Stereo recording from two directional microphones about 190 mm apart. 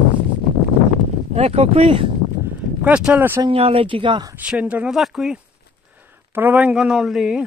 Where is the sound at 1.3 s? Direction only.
35° right (ahead or behind).